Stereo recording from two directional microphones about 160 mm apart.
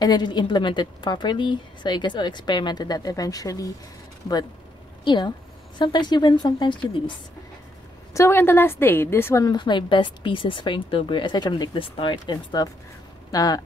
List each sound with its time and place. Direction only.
0.0 s a woman's voice: 25° left (ahead or behind)
5.0 s a woman's voice: 30° left (ahead or behind)
8.1 s a woman's voice: 15° left (ahead or behind)